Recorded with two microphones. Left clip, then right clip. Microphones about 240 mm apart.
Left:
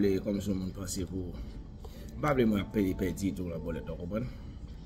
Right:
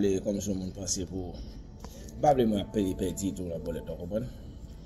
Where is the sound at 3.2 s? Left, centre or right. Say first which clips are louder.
Right 1 dB; left.